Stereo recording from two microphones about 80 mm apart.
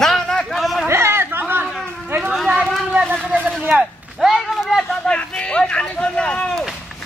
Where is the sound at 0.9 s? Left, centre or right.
Right.